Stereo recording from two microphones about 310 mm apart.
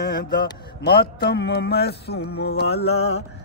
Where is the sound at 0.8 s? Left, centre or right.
Left.